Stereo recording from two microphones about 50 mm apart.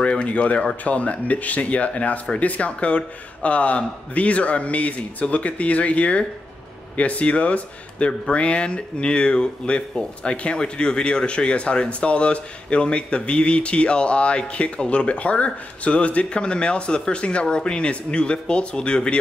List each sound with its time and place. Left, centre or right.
0.0 s speech: left